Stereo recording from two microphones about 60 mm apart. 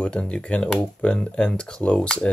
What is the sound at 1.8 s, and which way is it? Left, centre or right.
Speech, left.